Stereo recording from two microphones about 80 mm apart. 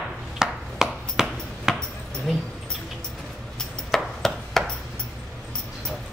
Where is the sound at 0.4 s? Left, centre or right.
Centre.